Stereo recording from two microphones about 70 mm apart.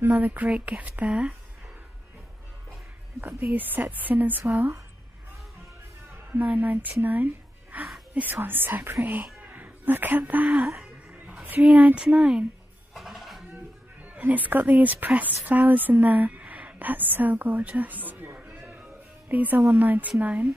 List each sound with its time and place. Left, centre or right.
0.0 s speech: right
3.2 s speech: right
6.3 s speech: right
12.9 s a sound: centre
14.0 s a woman's voice: right